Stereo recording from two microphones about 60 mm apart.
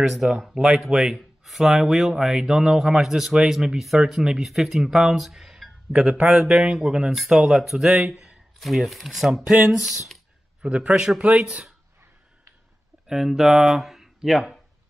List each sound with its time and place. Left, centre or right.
0.0 s speech: centre
8.5 s speech: centre
10.6 s speech: centre
13.0 s speech: centre